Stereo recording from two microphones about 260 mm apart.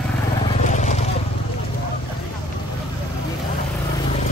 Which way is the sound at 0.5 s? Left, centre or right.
Left.